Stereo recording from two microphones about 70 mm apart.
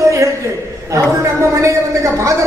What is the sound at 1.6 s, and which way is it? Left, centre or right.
Speech, right.